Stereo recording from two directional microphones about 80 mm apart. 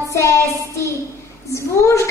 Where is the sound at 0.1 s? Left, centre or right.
Left.